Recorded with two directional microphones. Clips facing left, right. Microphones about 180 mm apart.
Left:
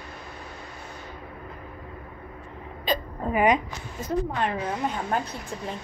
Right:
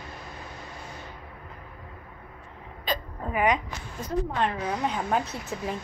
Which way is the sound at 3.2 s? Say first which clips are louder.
Left 3 dB; 25° left (ahead or behind).